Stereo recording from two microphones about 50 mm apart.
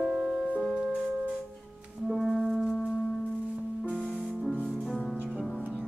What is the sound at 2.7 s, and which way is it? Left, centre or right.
Music, centre.